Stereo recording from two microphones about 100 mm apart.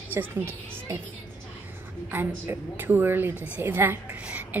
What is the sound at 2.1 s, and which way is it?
A woman's voice, 20° right (ahead or behind).